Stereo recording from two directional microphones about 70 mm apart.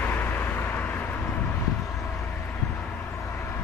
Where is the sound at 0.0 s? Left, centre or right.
Left.